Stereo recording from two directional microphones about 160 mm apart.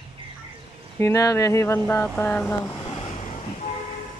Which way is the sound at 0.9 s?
20° left (ahead or behind).